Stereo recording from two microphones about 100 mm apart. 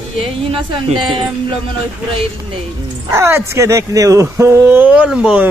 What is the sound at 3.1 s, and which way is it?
Speech, 25° right (ahead or behind).